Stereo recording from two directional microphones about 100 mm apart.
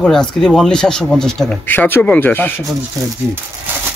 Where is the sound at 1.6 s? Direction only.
20° left (ahead or behind).